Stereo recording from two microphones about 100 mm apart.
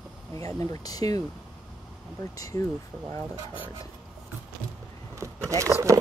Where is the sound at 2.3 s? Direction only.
35° left (ahead or behind).